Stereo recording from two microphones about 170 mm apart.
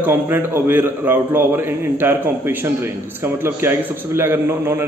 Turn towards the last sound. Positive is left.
turn(degrees=-15)  # may be behind; listen again after turning